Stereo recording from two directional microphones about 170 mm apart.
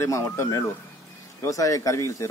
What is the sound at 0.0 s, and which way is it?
Speech, 15° left (ahead or behind).